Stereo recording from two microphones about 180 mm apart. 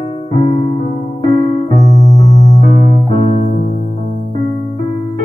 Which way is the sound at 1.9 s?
20° left (ahead or behind).